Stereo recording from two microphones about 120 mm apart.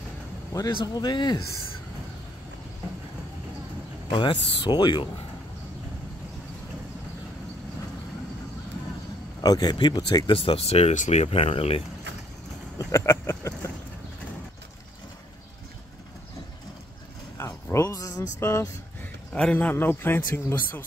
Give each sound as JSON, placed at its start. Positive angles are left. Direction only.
{"t": 0.5, "sound": "speech", "side_deg": 30}
{"t": 4.1, "sound": "speech", "side_deg": 40}
{"t": 9.4, "sound": "speech", "side_deg": 35}
{"t": 12.7, "sound": "a sound", "side_deg": 25}
{"t": 17.4, "sound": "a sound", "side_deg": 25}
{"t": 19.3, "sound": "speech", "side_deg": 10}